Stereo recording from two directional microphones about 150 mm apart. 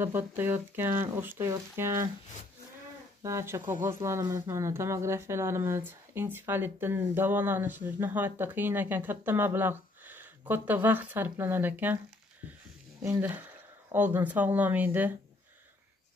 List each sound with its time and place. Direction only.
0.0 s speech: 15° right (ahead or behind)
3.2 s speech: 20° right (ahead or behind)
13.0 s speech: 10° right (ahead or behind)